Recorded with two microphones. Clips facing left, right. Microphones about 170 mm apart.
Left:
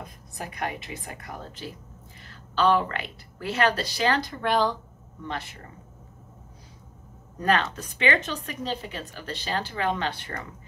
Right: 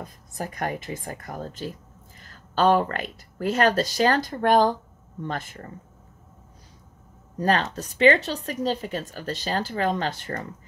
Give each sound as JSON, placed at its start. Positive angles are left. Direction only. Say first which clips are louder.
{"t": 0.4, "sound": "speech", "louder": "right 3 dB", "side_deg": -45}
{"t": 7.3, "sound": "speech", "louder": "right 1 dB", "side_deg": -35}